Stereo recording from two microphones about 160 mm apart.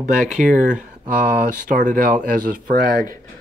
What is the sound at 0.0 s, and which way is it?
Speech, 50° right (ahead or behind).